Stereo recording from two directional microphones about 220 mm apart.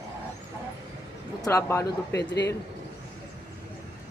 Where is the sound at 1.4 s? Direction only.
15° left (ahead or behind).